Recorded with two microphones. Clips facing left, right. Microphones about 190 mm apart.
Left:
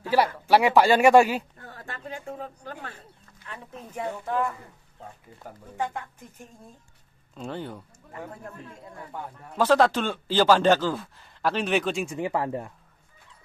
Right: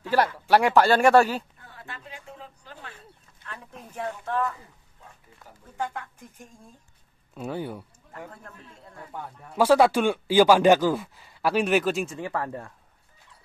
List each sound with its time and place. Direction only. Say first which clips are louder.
0.5 s speech: even; 10° left (ahead or behind)
1.6 s a sound: left 4 dB; 45° left (ahead or behind)
3.4 s speech: left 2 dB; 5° left (ahead or behind)
7.3 s speech: right 3 dB; 10° right (ahead or behind)
9.6 s speech: right 2 dB; 10° right (ahead or behind)
12.1 s speech: left 3 dB; 20° left (ahead or behind)